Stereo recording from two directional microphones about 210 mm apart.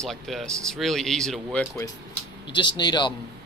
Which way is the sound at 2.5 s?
20° left (ahead or behind).